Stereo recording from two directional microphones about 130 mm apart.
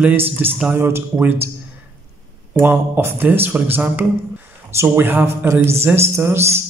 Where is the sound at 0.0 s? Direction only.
15° right (ahead or behind).